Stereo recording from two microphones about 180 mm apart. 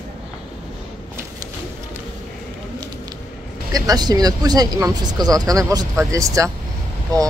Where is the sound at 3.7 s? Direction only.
20° right (ahead or behind).